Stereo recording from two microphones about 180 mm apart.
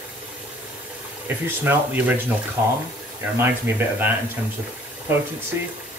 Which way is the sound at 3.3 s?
10° right (ahead or behind).